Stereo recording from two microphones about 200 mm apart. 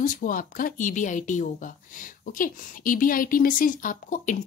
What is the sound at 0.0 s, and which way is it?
Speech, 40° left (ahead or behind).